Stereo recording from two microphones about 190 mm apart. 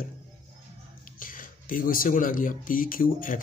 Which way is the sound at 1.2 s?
45° left (ahead or behind).